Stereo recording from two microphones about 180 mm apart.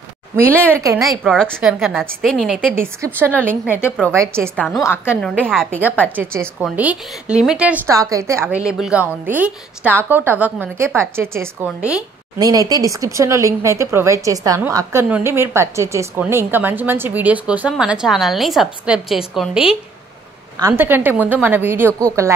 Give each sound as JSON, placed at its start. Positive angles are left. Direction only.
{"t": 0.5, "sound": "a woman's voice", "side_deg": 10}
{"t": 4.6, "sound": "a woman's voice", "side_deg": 0}
{"t": 5.8, "sound": "a woman's voice", "side_deg": -10}
{"t": 12.4, "sound": "a woman's voice", "side_deg": -20}
{"t": 20.5, "sound": "a woman's voice", "side_deg": -15}